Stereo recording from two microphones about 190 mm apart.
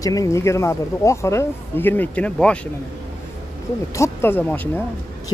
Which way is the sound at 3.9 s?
15° left (ahead or behind).